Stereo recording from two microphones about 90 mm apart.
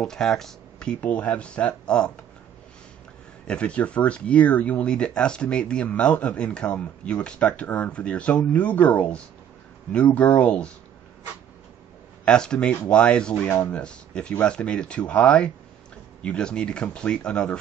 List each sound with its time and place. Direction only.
0.0 s speech: 5° left (ahead or behind)
3.4 s speech: 10° left (ahead or behind)
12.3 s speech: 10° left (ahead or behind)